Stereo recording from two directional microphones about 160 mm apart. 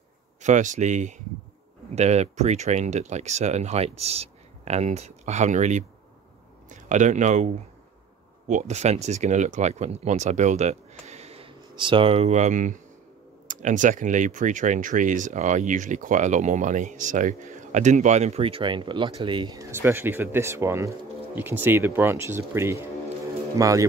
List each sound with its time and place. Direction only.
0.4 s a man's voice: 50° right (ahead or behind); by 23.9 s 20° right (ahead or behind)